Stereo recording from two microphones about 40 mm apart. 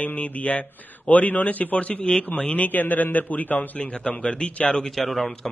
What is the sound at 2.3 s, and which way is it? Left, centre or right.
A man's voice, left.